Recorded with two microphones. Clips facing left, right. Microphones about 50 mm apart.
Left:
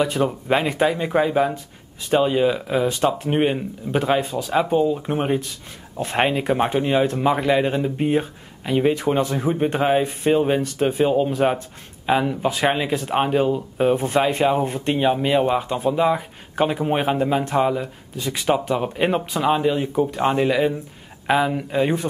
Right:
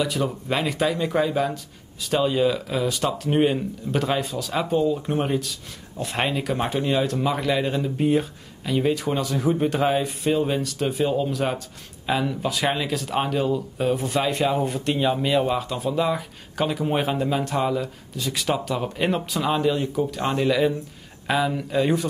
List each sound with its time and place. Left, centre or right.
0.0 s speech: left; by 5.3 s centre
5.3 s speech: left